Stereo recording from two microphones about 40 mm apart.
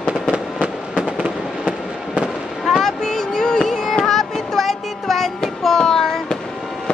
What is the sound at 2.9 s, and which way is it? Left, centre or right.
Music, centre.